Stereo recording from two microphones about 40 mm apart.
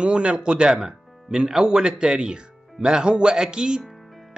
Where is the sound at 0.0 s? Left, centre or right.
Right.